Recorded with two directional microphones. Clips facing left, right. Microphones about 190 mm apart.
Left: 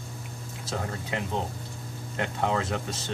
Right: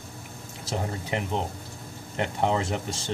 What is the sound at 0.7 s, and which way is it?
Speech, 20° right (ahead or behind).